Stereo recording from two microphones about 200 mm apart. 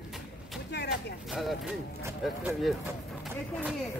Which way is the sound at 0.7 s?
55° left (ahead or behind).